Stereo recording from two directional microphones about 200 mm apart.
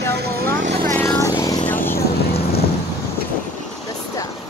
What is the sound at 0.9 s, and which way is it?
Vehicle, 10° left (ahead or behind).